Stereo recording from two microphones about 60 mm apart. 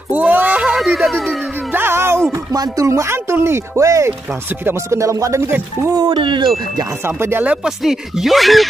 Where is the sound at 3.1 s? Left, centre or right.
Right.